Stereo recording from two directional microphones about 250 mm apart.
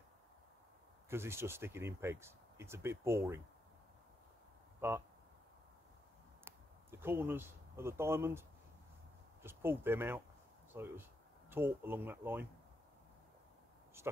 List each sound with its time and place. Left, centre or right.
1.1 s speech: centre
4.7 s speech: centre
6.4 s speech: centre